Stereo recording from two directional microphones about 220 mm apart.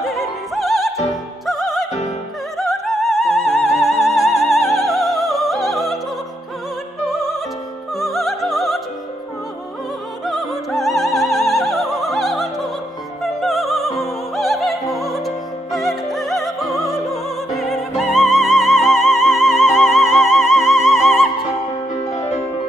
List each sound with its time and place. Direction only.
0.6 s music: centre (ahead or behind)
2.5 s opera: centre (ahead or behind)
7.1 s music: centre (ahead or behind)
10.2 s music: centre (ahead or behind)
22.1 s music: 25° left (ahead or behind)